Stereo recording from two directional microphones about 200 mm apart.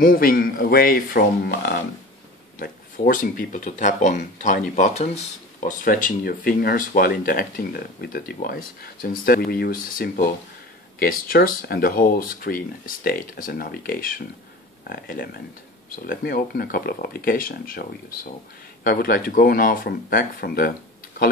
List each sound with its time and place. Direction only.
0.0 s speech: 45° left (ahead or behind)